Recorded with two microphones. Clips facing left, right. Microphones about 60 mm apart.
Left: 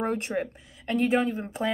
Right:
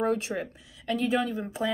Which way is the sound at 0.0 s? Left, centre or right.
Left.